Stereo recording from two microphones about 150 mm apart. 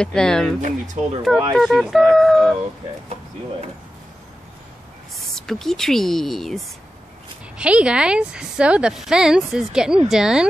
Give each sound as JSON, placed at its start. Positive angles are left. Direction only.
{"t": 0.0, "sound": "a woman's voice", "side_deg": 5}
{"t": 0.6, "sound": "speech", "side_deg": -55}
{"t": 1.6, "sound": "a woman's voice", "side_deg": 0}
{"t": 5.1, "sound": "a woman's voice", "side_deg": 0}